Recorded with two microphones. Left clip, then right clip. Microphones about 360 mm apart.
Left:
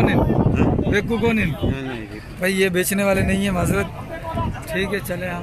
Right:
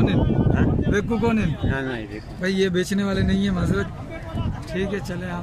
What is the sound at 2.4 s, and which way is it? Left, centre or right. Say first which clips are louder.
Speech: left 3 dB; centre.